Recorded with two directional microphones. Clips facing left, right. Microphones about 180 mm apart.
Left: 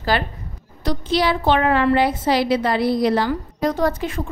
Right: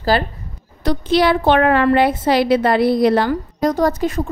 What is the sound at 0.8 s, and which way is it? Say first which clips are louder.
A woman's voice: right 5 dB; 60° right (ahead or behind).